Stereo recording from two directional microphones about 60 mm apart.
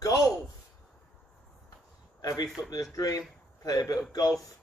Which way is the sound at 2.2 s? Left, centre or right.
Left.